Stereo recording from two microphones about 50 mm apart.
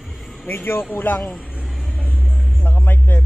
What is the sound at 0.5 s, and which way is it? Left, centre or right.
Speech, left.